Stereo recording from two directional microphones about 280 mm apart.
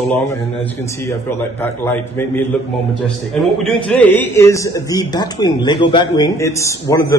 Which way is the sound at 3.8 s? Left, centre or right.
Centre.